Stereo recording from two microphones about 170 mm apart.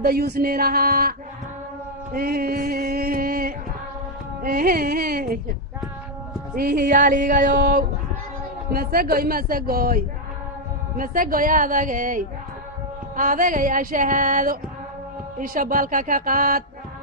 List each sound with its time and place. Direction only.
0.0 s a man's voice: 65° right (ahead or behind)
2.1 s music: 60° right (ahead or behind)
4.5 s a man's voice: 55° right (ahead or behind)
6.5 s music: 60° right (ahead or behind)
8.7 s a man's voice: 60° right (ahead or behind)
11.0 s music: 55° right (ahead or behind)